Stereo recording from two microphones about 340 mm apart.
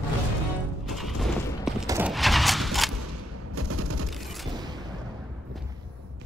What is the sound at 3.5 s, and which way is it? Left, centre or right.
Fusillade, right.